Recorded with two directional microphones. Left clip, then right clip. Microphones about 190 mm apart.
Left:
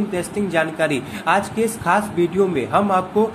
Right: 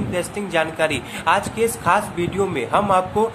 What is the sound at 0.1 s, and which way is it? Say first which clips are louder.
A man's voice: right 1 dB; 10° right (ahead or behind).